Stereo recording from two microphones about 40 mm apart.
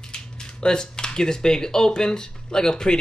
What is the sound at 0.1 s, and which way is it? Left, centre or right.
Speech, centre.